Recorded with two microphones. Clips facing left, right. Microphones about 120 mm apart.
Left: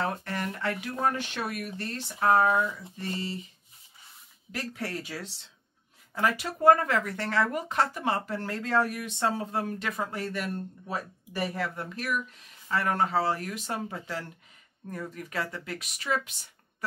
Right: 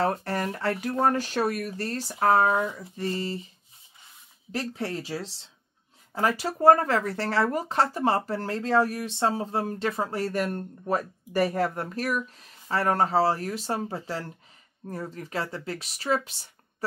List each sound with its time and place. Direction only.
0.0 s speech: 35° right (ahead or behind)
4.5 s speech: 30° right (ahead or behind)